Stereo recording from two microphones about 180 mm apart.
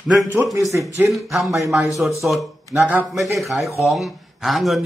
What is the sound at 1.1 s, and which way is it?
A man's voice, centre (ahead or behind).